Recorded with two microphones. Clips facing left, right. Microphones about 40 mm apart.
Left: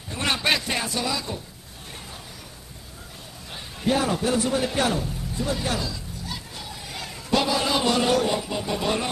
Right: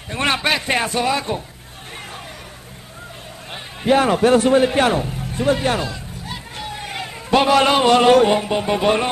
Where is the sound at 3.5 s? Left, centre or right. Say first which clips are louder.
Right 7 dB; right.